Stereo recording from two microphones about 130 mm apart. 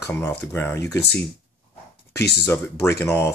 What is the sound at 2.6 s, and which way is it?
Speech, 20° left (ahead or behind).